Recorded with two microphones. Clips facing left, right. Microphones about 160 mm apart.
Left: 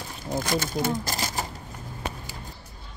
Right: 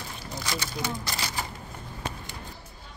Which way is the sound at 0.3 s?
50° left (ahead or behind).